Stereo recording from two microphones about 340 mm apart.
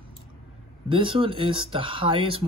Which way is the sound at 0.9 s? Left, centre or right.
Centre.